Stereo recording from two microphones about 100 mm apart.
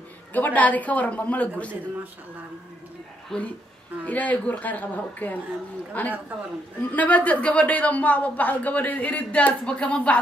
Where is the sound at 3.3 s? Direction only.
10° left (ahead or behind).